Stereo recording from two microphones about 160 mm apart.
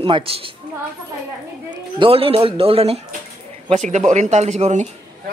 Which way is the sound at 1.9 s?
35° right (ahead or behind).